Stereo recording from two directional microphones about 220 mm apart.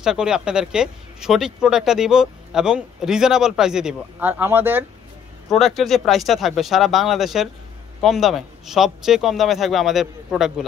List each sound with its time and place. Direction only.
0.0 s speech: 5° right (ahead or behind)